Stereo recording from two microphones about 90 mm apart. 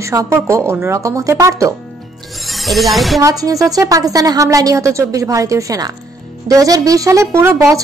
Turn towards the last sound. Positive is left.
turn(degrees=-35)  # may be behind; listen again after turning